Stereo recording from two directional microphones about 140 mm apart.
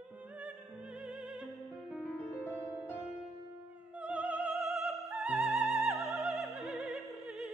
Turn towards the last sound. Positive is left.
turn(degrees=0)  # may be behind; listen again after turning